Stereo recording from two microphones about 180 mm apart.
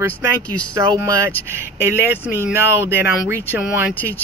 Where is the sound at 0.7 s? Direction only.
15° right (ahead or behind).